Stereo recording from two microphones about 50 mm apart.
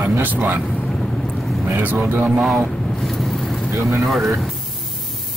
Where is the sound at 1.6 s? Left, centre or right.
Right.